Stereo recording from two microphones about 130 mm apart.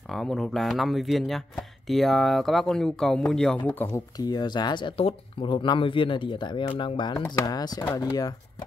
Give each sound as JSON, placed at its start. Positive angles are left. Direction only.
{"t": 0.1, "sound": "speech", "side_deg": 0}
{"t": 4.2, "sound": "speech", "side_deg": 30}